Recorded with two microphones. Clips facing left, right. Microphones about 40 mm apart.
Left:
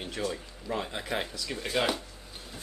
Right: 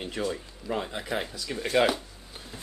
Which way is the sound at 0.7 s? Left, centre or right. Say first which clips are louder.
Right 1 dB; centre.